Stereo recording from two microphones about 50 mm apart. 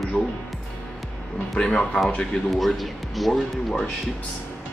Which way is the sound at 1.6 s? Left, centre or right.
Centre.